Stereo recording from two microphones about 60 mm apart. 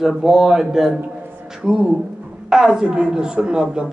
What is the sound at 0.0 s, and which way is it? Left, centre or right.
A woman's voice, centre.